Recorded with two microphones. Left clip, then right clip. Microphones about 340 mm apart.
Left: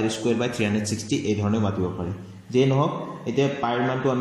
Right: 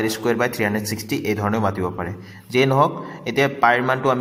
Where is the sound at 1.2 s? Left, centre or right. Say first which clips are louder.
Right 6 dB; right.